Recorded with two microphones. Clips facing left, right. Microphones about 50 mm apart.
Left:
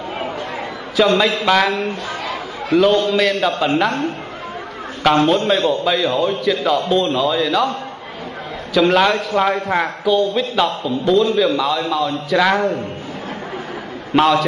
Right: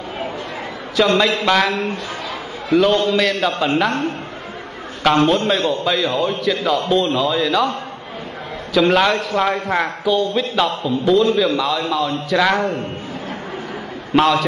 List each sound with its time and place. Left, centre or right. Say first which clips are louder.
0.9 s a man's voice: left 1 dB; centre
5.0 s a man's voice: left 1 dB; centre
8.7 s a man's voice: left 1 dB; centre
14.1 s a man's voice: left 1 dB; centre